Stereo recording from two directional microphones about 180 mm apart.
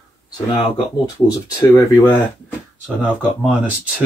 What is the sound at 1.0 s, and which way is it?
Speech, 20° left (ahead or behind).